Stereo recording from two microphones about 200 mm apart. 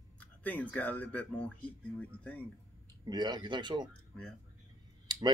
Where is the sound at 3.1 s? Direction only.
20° right (ahead or behind).